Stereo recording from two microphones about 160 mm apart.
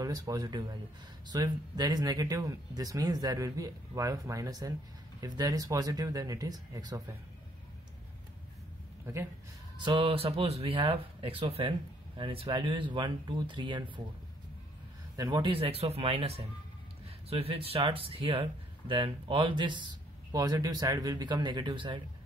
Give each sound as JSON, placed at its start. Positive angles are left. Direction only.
{"t": 0.0, "sound": "speech", "side_deg": -25}
{"t": 9.0, "sound": "a man's voice", "side_deg": -15}
{"t": 9.8, "sound": "speech", "side_deg": -30}
{"t": 15.1, "sound": "speech", "side_deg": -30}